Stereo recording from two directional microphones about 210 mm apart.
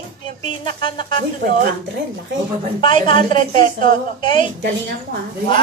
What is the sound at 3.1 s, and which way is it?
Speech, 35° right (ahead or behind).